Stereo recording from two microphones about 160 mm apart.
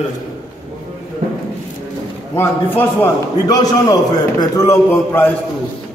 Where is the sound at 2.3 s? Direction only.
15° left (ahead or behind).